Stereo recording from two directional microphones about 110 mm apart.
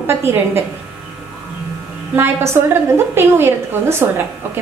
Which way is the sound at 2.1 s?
20° right (ahead or behind).